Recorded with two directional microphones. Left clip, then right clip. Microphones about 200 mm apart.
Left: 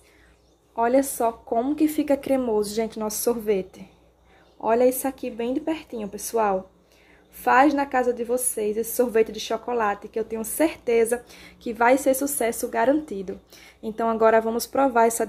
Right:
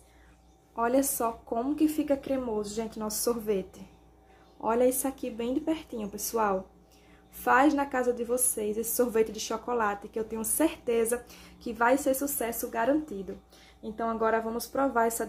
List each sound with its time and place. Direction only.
0.7 s speech: 20° left (ahead or behind)
2.0 s a woman's voice: 45° left (ahead or behind)